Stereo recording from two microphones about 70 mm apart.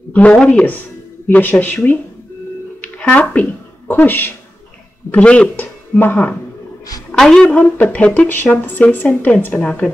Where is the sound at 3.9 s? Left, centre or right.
Left.